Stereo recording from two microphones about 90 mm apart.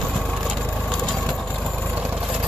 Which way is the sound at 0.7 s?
10° left (ahead or behind).